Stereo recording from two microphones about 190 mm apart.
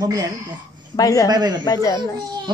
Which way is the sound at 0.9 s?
20° left (ahead or behind).